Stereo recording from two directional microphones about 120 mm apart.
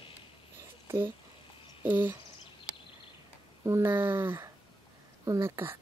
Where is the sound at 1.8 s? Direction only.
15° right (ahead or behind).